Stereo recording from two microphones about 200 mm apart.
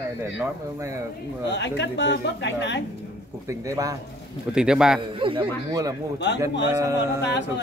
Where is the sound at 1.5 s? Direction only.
60° left (ahead or behind).